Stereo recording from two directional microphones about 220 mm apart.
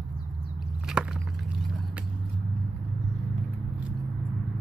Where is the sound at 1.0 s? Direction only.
5° right (ahead or behind).